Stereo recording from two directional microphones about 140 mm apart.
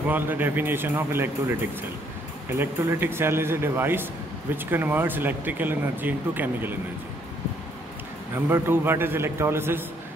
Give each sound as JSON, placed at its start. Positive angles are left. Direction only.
{"t": 0.1, "sound": "speech", "side_deg": -15}
{"t": 8.4, "sound": "speech", "side_deg": -15}